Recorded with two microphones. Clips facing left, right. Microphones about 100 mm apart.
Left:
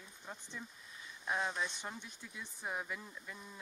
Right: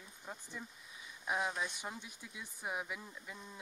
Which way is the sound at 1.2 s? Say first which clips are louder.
Even; 10° right (ahead or behind).